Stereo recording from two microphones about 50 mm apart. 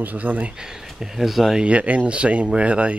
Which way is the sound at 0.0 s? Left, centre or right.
Right.